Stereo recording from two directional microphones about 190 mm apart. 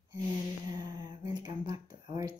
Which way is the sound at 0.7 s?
20° right (ahead or behind).